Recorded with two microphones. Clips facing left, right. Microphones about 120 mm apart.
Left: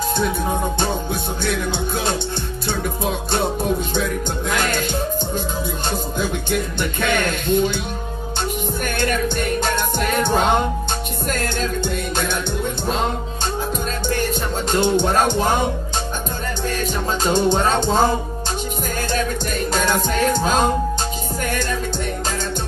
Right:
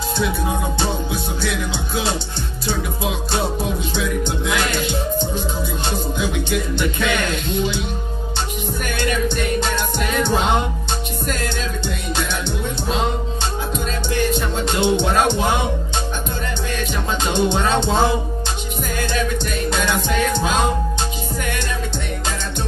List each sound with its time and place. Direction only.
0.7 s music: 50° left (ahead or behind)
8.8 s music: 45° left (ahead or behind)
12.8 s music: 45° left (ahead or behind)
14.1 s music: 45° left (ahead or behind)
17.2 s music: 40° left (ahead or behind)